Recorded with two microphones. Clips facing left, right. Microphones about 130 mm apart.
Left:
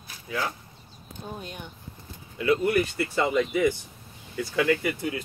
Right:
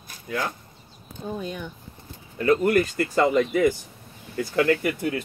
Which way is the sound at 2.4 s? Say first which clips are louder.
Right 3 dB; 45° right (ahead or behind).